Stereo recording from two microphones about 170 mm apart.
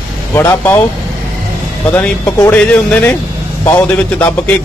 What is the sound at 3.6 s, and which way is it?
Speech, 25° left (ahead or behind).